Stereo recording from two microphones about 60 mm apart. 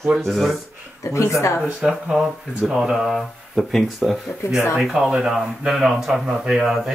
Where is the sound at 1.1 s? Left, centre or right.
Left.